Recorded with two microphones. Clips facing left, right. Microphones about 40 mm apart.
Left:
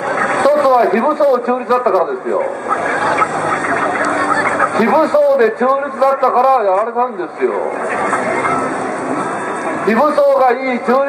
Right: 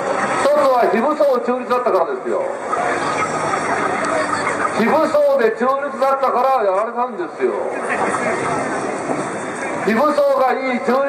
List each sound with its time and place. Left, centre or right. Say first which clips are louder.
0.2 s speech: left 3 dB; centre
2.7 s speech: left 4 dB; centre
4.1 s a sound: left 4 dB; centre
4.7 s a man's voice: left 2 dB; centre
8.1 s a sound: left 4 dB; centre
9.8 s a man's voice: left 4 dB; centre